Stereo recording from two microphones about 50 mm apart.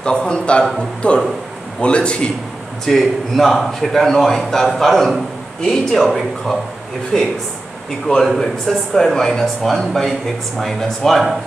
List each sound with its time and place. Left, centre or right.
0.0 s a man's voice: centre
2.8 s a man's voice: centre
8.4 s a man's voice: centre